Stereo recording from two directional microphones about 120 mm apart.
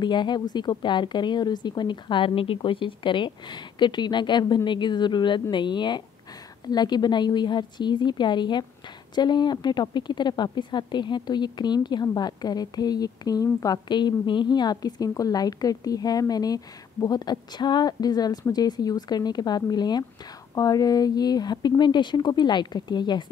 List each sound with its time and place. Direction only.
0.0 s a woman's voice: 40° left (ahead or behind)